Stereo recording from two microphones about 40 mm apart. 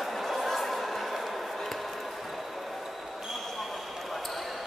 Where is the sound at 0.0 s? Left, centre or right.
Centre.